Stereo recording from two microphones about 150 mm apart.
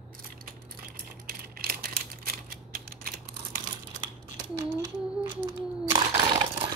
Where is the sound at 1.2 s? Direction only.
85° right.